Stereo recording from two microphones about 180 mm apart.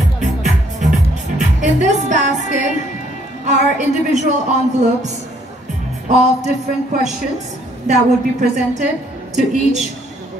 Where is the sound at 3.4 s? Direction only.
40° right (ahead or behind).